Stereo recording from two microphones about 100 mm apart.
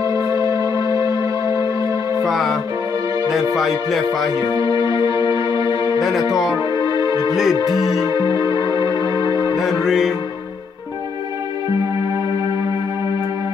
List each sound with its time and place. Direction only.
0.0 s music: 35° right (ahead or behind)
2.2 s music: centre (ahead or behind)
3.5 s speech: centre (ahead or behind)
4.7 s music: 55° left (ahead or behind)
5.9 s music: centre (ahead or behind)
6.3 s speech: 5° right (ahead or behind)
6.7 s music: 50° left (ahead or behind)
7.2 s speech: 5° right (ahead or behind)
8.3 s music: 35° right (ahead or behind)
8.5 s music: 50° left (ahead or behind)
9.6 s speech: 5° right (ahead or behind)